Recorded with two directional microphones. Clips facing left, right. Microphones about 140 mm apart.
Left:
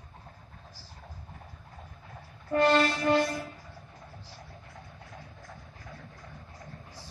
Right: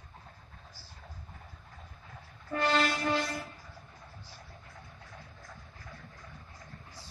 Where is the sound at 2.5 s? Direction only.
50° left (ahead or behind).